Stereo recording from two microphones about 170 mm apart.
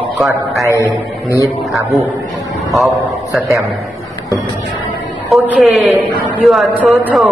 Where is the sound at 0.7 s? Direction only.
20° left (ahead or behind).